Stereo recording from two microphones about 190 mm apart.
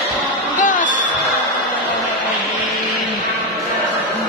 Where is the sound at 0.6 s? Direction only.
45° left (ahead or behind).